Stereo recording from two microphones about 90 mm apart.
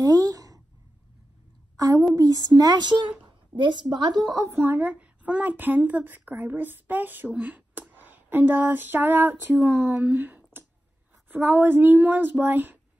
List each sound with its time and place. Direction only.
0.0 s speech: 40° right (ahead or behind)
1.8 s a woman's voice: 40° right (ahead or behind)
4.6 s a woman's voice: 20° right (ahead or behind)